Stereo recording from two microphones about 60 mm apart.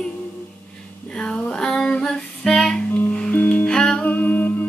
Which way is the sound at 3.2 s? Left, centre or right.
Left.